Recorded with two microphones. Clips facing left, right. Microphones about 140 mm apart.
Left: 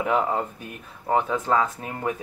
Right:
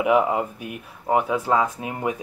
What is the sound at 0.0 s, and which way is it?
Speech, 10° right (ahead or behind).